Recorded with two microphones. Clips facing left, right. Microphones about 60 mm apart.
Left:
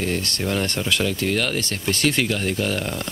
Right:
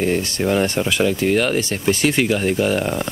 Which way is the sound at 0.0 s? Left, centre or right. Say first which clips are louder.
Right 5 dB; centre.